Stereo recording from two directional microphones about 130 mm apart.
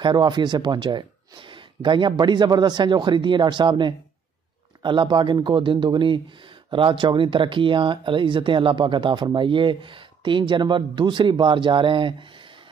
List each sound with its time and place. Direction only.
0.0 s speech: 35° right (ahead or behind)